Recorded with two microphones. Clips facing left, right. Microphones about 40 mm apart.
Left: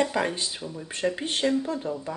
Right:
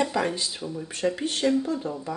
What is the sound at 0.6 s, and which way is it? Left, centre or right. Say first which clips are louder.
Speech: right 3 dB; right.